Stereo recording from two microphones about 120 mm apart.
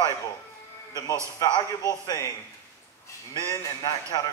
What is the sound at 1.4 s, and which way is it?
A man's voice, 30° left (ahead or behind).